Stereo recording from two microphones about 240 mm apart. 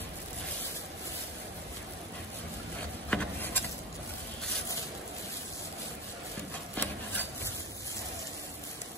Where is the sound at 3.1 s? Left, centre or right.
Centre.